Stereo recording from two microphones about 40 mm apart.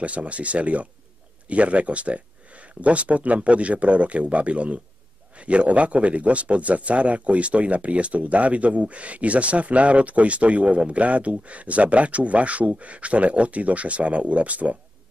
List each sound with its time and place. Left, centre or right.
0.0 s a man's voice: right